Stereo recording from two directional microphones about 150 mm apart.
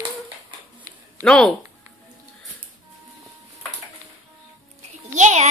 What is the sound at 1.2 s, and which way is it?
Speech, 5° left (ahead or behind).